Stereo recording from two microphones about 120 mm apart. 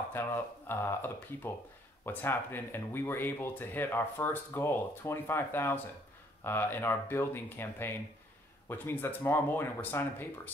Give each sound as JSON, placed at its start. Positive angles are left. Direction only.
{"t": 0.1, "sound": "speech", "side_deg": 20}